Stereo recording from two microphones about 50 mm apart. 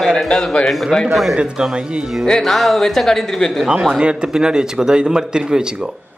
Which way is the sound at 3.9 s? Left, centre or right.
Centre.